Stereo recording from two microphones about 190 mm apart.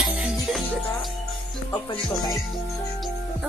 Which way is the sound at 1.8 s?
20° left (ahead or behind).